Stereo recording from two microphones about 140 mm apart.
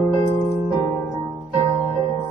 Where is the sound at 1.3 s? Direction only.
35° right (ahead or behind).